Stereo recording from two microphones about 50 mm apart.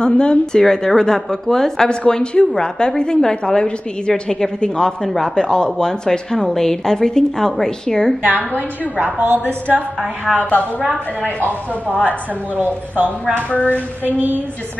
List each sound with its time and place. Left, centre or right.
0.0 s a woman's voice: centre
8.5 s a woman's voice: right
9.2 s a woman's voice: right
10.3 s speech: left
12.5 s speech: right
13.5 s a woman's voice: left
14.0 s speech: right